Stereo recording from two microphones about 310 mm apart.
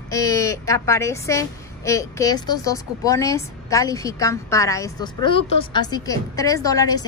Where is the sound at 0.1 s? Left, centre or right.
Centre.